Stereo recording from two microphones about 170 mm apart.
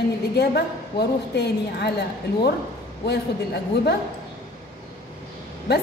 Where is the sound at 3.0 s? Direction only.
75° left (ahead or behind).